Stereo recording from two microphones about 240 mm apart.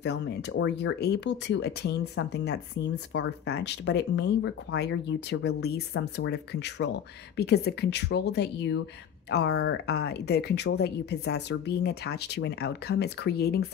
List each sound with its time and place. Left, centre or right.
0.0 s speech: left